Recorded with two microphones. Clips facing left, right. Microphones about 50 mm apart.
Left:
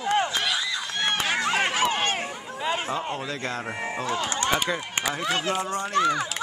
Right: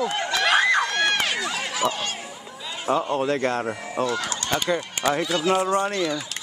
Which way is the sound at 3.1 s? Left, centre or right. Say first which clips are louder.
Right 8 dB; right.